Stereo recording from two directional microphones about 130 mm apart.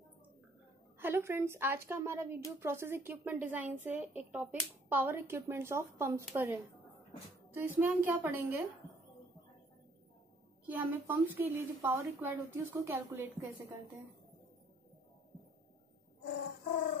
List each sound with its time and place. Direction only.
0.9 s a woman's voice: 15° right (ahead or behind)
10.7 s a woman's voice: 15° right (ahead or behind)